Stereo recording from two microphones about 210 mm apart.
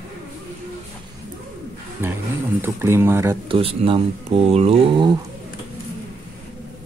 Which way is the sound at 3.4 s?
25° right (ahead or behind).